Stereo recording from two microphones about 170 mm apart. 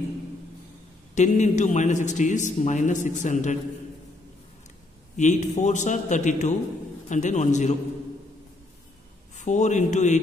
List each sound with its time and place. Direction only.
1.1 s a man's voice: 45° left (ahead or behind)
5.1 s a man's voice: 45° left (ahead or behind)
9.4 s a man's voice: 45° left (ahead or behind)